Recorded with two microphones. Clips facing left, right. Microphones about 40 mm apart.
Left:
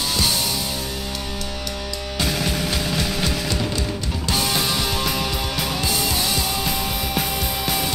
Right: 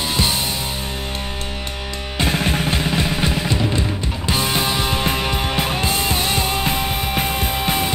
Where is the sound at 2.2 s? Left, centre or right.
Right.